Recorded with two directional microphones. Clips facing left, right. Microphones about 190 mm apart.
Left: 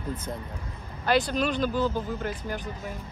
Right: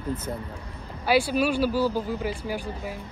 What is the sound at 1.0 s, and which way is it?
Speech, 10° right (ahead or behind).